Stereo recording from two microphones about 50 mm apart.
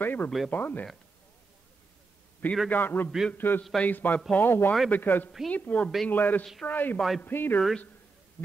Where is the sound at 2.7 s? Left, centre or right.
Left.